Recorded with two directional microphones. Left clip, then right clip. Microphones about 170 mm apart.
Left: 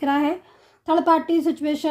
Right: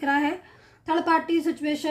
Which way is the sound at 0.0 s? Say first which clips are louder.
Left 2 dB; 40° left (ahead or behind).